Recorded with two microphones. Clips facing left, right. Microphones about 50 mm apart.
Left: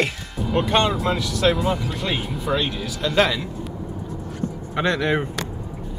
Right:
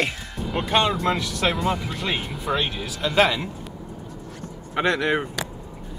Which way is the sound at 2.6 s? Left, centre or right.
Centre.